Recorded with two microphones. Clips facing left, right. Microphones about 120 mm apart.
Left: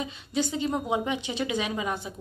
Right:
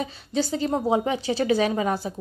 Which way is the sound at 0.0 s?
35° right (ahead or behind).